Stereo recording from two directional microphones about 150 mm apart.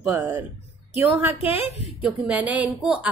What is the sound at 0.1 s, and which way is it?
Speech, 15° right (ahead or behind).